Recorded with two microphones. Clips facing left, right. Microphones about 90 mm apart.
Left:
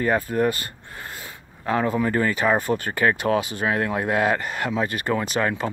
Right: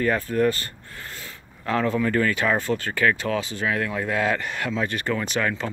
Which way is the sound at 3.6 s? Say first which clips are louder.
Left 2 dB; 40° left (ahead or behind).